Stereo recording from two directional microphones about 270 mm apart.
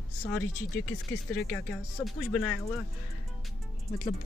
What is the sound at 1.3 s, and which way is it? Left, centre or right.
Speech, centre.